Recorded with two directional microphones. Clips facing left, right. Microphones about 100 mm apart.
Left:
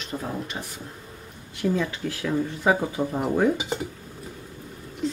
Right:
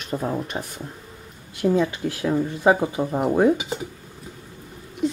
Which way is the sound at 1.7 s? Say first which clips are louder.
Right 5 dB; 20° right (ahead or behind).